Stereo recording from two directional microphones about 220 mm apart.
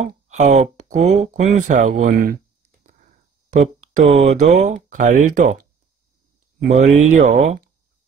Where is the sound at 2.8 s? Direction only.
35° right (ahead or behind).